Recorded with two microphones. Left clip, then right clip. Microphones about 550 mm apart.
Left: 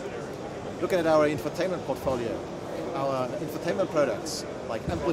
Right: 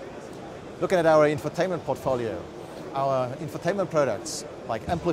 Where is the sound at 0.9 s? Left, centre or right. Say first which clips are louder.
Right 3 dB; right.